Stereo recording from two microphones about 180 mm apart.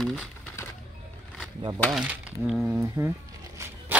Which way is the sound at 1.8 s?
5° right (ahead or behind).